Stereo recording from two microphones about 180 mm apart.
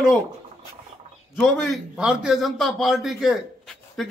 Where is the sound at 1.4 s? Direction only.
5° right (ahead or behind).